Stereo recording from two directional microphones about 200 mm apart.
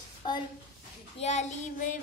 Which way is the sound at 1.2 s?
35° left (ahead or behind).